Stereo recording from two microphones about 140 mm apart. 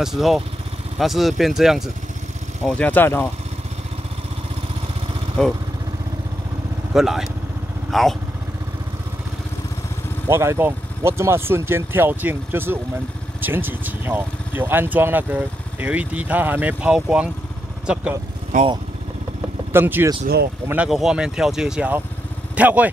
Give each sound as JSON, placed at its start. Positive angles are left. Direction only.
{"t": 0.0, "sound": "speech", "side_deg": 0}
{"t": 2.6, "sound": "speech", "side_deg": 10}
{"t": 5.4, "sound": "speech", "side_deg": 5}
{"t": 6.9, "sound": "speech", "side_deg": -5}
{"t": 10.2, "sound": "speech", "side_deg": -20}
{"t": 19.7, "sound": "speech", "side_deg": -15}